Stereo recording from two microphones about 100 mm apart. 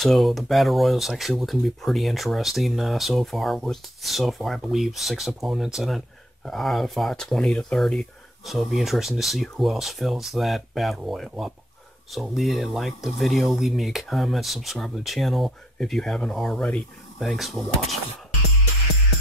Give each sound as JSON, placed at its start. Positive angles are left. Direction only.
{"t": 0.0, "sound": "speech", "side_deg": 0}